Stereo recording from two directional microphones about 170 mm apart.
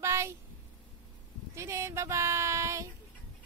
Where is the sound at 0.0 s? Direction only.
15° right (ahead or behind).